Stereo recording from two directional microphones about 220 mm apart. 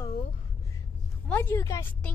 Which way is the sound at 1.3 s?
10° left (ahead or behind).